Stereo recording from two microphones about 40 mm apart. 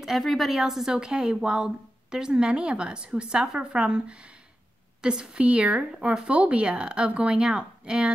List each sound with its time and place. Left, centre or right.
0.2 s a woman's voice: centre
0.9 s a woman's voice: centre
5.4 s a woman's voice: right